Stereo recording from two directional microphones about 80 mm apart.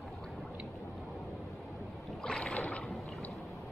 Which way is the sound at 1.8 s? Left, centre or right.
Centre.